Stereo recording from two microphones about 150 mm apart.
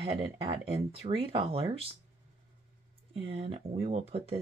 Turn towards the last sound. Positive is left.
turn(degrees=-45)  # may be behind; listen again after turning